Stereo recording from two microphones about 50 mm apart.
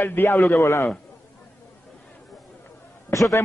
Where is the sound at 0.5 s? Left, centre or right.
Left.